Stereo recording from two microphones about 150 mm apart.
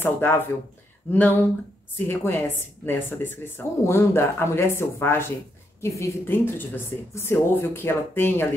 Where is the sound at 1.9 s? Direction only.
15° left (ahead or behind).